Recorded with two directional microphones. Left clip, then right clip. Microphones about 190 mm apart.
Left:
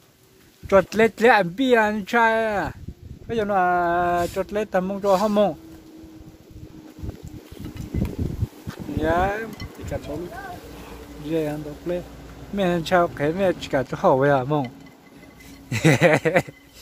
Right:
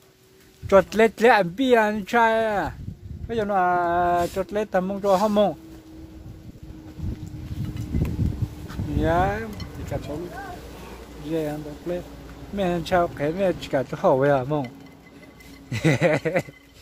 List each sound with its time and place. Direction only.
0.7 s speech: centre (ahead or behind)
9.0 s speech: 5° left (ahead or behind)
11.2 s speech: 15° left (ahead or behind)
15.7 s speech: 20° left (ahead or behind)